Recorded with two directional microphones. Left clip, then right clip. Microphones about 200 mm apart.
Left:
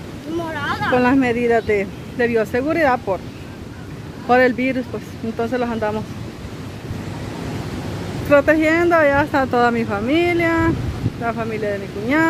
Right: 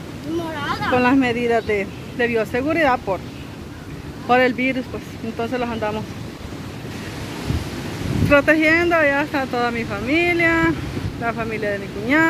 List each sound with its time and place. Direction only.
0.5 s speech: centre (ahead or behind)
4.3 s speech: 15° left (ahead or behind)
8.3 s speech: 10° left (ahead or behind)